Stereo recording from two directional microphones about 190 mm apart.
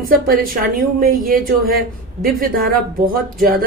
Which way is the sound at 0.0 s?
50° right (ahead or behind).